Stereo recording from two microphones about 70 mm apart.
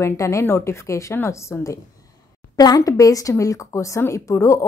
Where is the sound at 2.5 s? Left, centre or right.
Left.